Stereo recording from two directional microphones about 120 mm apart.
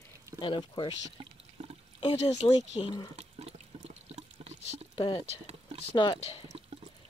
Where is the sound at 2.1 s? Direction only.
60° left (ahead or behind).